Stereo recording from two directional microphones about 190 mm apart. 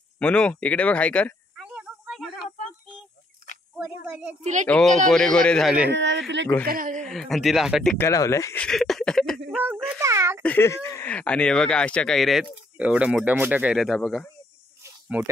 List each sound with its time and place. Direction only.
0.2 s speech: 5° left (ahead or behind)
1.6 s a sound: 5° right (ahead or behind)
3.7 s a woman's voice: 5° right (ahead or behind)
4.4 s speech: 40° right (ahead or behind)
4.6 s speech: 5° left (ahead or behind)
5.9 s speech: 70° right (ahead or behind)
6.6 s speech: 45° right (ahead or behind)
7.0 s speech: centre (ahead or behind)
8.0 s speech: 15° left (ahead or behind)
8.6 s a sound: centre (ahead or behind)
9.9 s a child's voice: 15° right (ahead or behind)
10.4 s speech: 10° left (ahead or behind)
14.8 s snake: 5° right (ahead or behind)